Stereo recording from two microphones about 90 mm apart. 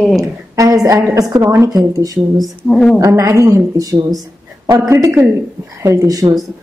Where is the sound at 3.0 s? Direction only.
30° right (ahead or behind).